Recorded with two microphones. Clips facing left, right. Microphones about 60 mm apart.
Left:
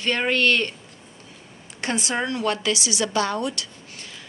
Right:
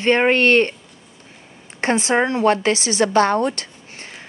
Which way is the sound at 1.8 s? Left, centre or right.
Right.